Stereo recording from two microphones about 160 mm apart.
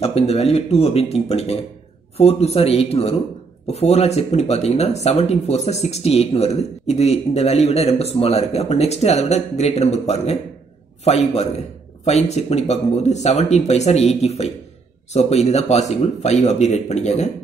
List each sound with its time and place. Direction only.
0.0 s speech: 40° left (ahead or behind)